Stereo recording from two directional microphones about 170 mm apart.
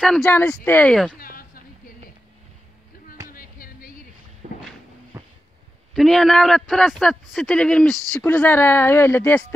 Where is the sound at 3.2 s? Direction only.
60° left (ahead or behind).